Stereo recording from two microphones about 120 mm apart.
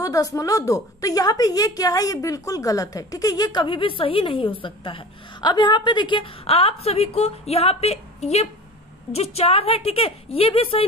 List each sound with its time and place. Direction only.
0.0 s a woman's voice: 30° left (ahead or behind); by 10.9 s 50° left (ahead or behind)